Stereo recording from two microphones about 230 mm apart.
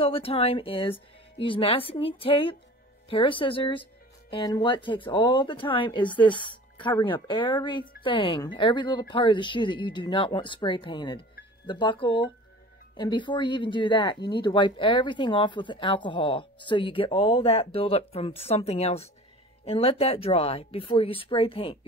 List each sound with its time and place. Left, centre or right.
0.0 s speech: left